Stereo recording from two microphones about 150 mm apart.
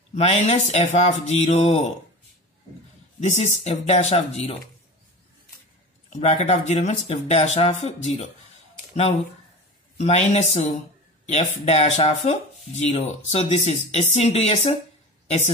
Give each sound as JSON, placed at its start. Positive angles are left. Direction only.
{"t": 0.1, "sound": "speech", "side_deg": 50}
{"t": 3.2, "sound": "speech", "side_deg": 50}
{"t": 6.1, "sound": "speech", "side_deg": 50}
{"t": 9.9, "sound": "a woman's voice", "side_deg": 45}